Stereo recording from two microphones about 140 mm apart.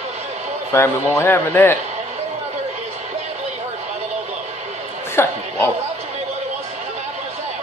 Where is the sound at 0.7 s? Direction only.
15° left (ahead or behind).